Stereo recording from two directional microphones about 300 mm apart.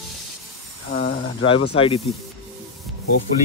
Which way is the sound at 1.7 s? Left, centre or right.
Centre.